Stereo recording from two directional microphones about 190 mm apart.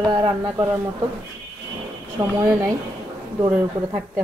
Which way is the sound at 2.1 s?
15° right (ahead or behind).